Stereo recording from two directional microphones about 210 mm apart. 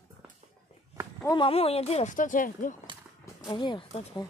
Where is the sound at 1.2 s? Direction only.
20° left (ahead or behind); by 2.7 s 40° left (ahead or behind).